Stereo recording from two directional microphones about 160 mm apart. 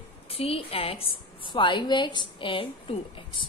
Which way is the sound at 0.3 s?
35° left (ahead or behind).